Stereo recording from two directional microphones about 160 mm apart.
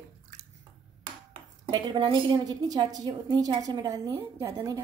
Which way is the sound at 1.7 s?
30° right (ahead or behind).